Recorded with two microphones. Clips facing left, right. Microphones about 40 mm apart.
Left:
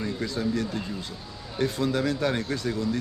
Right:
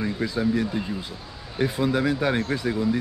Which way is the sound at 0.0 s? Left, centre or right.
Centre.